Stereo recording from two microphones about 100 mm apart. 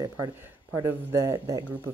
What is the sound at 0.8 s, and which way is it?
Speech, 25° right (ahead or behind).